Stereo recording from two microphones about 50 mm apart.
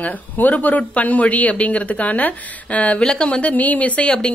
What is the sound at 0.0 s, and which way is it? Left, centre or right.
Speech, left.